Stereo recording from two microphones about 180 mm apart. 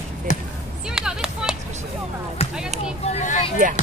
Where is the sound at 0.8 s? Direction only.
5° right (ahead or behind).